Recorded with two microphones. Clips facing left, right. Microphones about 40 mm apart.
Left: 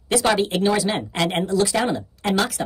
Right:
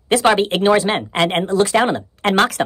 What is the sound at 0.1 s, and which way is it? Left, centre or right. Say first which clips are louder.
Speech: right 5 dB; right.